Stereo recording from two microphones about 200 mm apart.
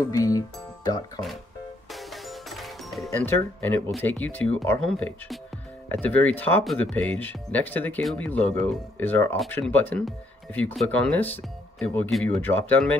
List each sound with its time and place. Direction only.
0.0 s speech: 15° left (ahead or behind)
1.9 s music: centre (ahead or behind)
3.1 s speech: 10° left (ahead or behind)